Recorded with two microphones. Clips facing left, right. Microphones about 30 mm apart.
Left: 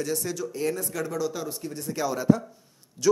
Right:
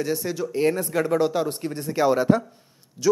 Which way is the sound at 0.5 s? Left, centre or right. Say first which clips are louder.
Right 9 dB; right.